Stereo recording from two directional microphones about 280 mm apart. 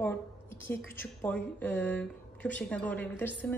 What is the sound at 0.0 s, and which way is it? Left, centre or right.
Speech, centre.